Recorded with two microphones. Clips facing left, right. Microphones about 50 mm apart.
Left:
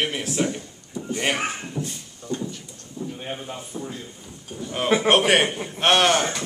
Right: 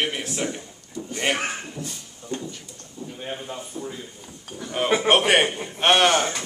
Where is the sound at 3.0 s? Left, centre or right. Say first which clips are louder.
Left 4 dB; centre.